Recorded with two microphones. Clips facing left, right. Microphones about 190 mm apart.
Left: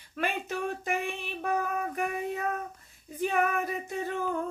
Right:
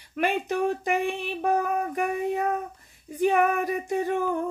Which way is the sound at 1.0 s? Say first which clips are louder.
Right 7 dB; 15° right (ahead or behind).